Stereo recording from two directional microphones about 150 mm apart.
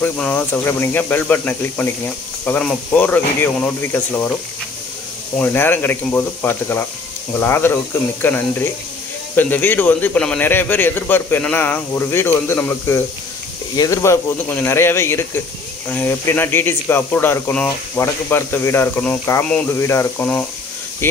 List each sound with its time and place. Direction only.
0.0 s speech: 10° left (ahead or behind)
5.4 s speech: 15° left (ahead or behind)